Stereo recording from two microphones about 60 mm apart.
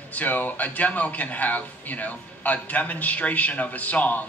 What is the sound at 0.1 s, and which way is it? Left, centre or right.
A man's voice, left.